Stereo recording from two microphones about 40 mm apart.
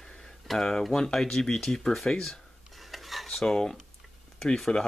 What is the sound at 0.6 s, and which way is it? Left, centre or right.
Speech, centre.